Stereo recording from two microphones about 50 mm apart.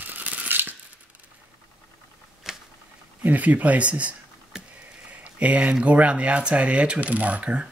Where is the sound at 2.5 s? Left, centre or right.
Centre.